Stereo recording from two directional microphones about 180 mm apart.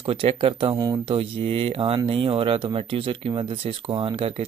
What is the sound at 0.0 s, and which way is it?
Speech, 30° right (ahead or behind).